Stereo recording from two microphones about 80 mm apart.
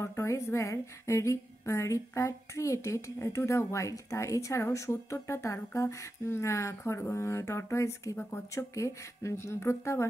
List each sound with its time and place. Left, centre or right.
0.0 s a woman's voice: left